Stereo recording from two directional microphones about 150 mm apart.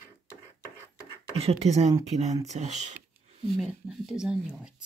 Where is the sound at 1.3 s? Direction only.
45° right (ahead or behind).